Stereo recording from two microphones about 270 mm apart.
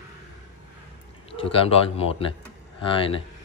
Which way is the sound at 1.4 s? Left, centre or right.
Left.